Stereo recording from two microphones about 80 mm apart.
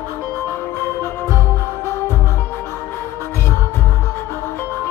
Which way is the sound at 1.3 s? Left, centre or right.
Left.